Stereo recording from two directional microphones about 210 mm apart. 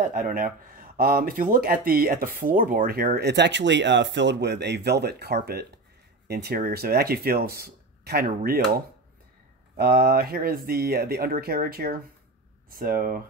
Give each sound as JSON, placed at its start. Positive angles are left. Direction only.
{"t": 0.0, "sound": "speech", "side_deg": -40}